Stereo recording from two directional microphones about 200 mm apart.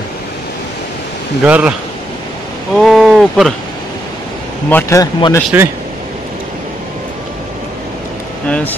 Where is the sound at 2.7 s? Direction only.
Centre (ahead or behind).